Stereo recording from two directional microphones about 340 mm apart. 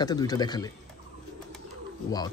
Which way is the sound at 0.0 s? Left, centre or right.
Centre.